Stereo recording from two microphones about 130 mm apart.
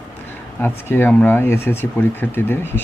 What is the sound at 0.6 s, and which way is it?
Speech, 15° left (ahead or behind).